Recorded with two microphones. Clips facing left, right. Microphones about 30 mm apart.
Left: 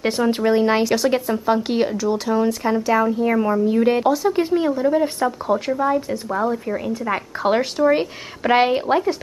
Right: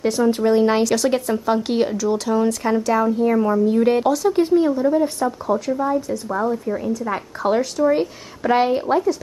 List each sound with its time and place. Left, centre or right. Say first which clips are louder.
0.0 s speech: right 1 dB; left
0.5 s speech: even; centre
3.3 s speech: right 1 dB; centre
3.8 s speech: even; centre
4.6 s speech: right 2 dB; centre
4.9 s speech: even; left
6.3 s speech: even; left